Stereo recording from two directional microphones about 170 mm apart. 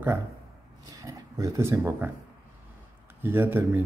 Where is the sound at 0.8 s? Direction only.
20° right (ahead or behind).